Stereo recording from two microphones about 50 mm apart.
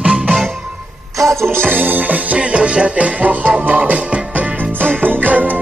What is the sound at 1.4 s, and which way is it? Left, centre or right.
Music, right.